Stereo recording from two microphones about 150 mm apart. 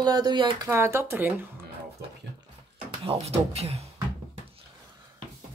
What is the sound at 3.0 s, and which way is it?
Speech, 40° right (ahead or behind).